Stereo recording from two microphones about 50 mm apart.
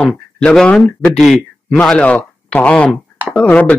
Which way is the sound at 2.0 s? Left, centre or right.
Left.